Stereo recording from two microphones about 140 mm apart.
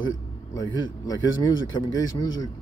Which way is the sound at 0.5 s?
25° left (ahead or behind).